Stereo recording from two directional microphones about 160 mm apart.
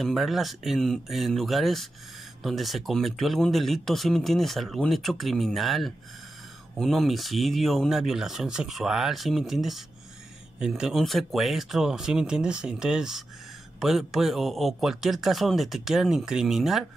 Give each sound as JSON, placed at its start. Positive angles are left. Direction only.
{"t": 0.0, "sound": "speech", "side_deg": 0}